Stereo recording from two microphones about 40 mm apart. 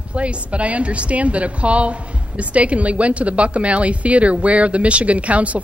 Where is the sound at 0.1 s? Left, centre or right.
Right.